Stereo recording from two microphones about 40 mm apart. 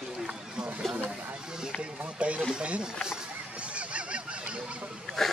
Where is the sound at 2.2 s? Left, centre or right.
Right.